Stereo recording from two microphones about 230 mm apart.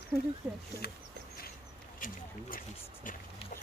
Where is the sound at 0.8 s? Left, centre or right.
Left.